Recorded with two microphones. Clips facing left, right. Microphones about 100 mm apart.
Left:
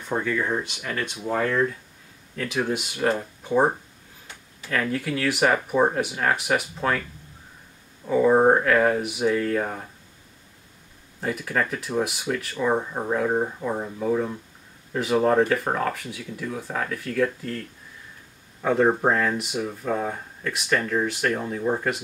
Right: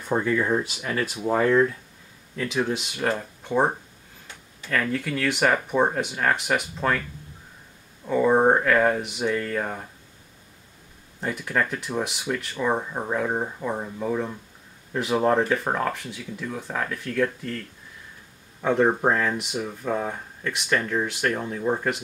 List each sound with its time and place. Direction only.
0.1 s speech: 5° right (ahead or behind)
2.3 s speech: centre (ahead or behind)
8.1 s speech: centre (ahead or behind)
11.1 s speech: centre (ahead or behind)
18.6 s speech: centre (ahead or behind)